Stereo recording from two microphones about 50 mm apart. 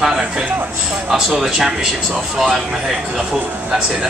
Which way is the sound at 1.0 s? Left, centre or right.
Centre.